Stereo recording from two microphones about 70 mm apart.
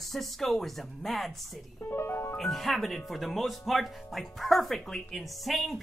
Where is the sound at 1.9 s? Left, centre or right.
Left.